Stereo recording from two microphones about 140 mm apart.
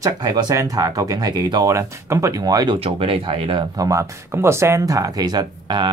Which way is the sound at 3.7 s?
25° right (ahead or behind).